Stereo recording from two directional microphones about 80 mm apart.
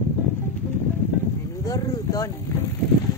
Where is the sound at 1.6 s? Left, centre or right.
Left.